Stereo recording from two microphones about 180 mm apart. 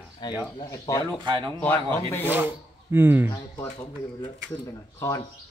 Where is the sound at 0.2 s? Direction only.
25° left (ahead or behind).